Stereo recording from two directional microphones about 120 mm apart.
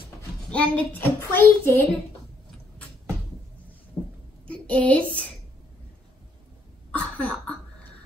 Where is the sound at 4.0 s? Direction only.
20° left (ahead or behind).